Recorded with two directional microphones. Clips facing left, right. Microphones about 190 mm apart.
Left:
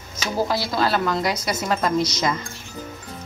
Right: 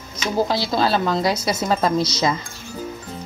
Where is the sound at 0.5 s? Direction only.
30° right (ahead or behind).